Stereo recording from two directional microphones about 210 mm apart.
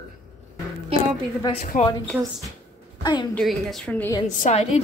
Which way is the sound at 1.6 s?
40° left (ahead or behind).